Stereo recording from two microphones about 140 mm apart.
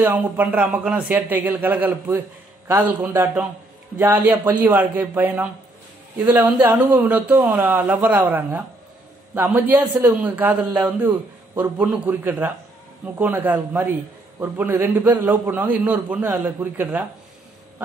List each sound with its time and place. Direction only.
0.0 s a man's voice: 15° right (ahead or behind)